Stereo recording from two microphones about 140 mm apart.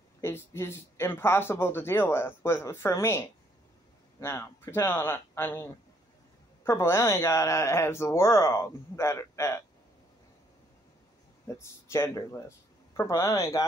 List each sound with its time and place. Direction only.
0.2 s speech: 15° left (ahead or behind)
11.4 s speech: 20° left (ahead or behind)